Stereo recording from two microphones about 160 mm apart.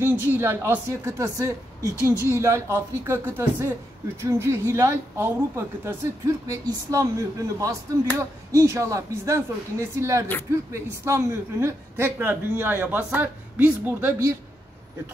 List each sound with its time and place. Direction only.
0.0 s a woman's voice: 15° right (ahead or behind)